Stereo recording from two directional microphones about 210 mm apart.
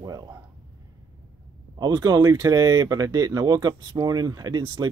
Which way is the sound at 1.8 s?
20° right (ahead or behind).